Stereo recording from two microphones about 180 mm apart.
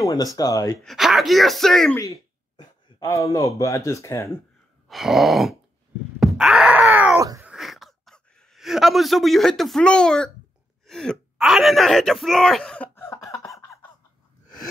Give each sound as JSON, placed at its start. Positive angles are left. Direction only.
{"t": 0.0, "sound": "speech", "side_deg": 20}
{"t": 0.8, "sound": "speech", "side_deg": 0}
{"t": 2.0, "sound": "speech", "side_deg": 20}
{"t": 4.8, "sound": "speech", "side_deg": 0}
{"t": 6.3, "sound": "groan", "side_deg": -5}
{"t": 7.2, "sound": "cat", "side_deg": -15}
{"t": 7.4, "sound": "a sound", "side_deg": 0}
{"t": 10.9, "sound": "speech", "side_deg": 5}
{"t": 13.3, "sound": "a sound", "side_deg": 15}